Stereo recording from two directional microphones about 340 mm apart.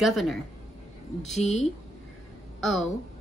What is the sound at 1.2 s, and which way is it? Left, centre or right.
Speech, centre.